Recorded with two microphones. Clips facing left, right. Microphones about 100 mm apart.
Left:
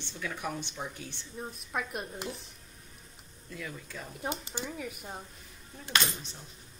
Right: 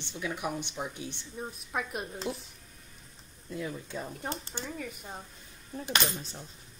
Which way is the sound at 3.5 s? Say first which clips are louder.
Right 5 dB; 25° right (ahead or behind).